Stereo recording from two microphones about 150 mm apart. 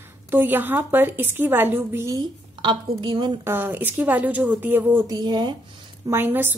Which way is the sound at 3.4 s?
15° right (ahead or behind).